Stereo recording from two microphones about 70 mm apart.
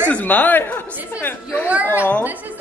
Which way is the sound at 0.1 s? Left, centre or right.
Left.